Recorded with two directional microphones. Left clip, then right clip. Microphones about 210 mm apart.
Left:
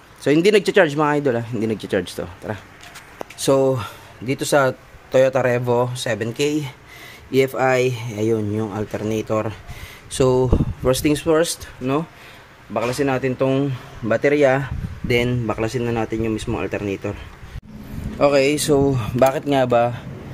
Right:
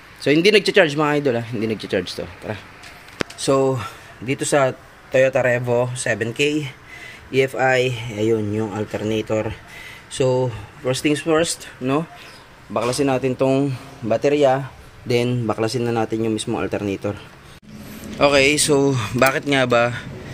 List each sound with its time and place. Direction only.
0.2 s speech: 5° left (ahead or behind)
3.5 s speech: 20° left (ahead or behind)
5.3 s speech: 10° left (ahead or behind)
6.3 s speech: 15° left (ahead or behind)
8.5 s speech: 10° left (ahead or behind)
10.1 s speech: 25° left (ahead or behind)
12.7 s speech: 5° right (ahead or behind)
14.1 s speech: 10° left (ahead or behind); by 17.2 s 5° right (ahead or behind)
18.2 s speech: centre (ahead or behind)